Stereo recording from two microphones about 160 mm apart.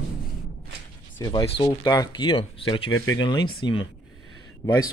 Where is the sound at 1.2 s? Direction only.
25° left (ahead or behind).